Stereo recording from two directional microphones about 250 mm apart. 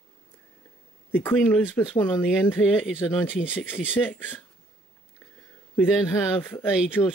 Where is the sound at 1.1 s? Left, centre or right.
Centre.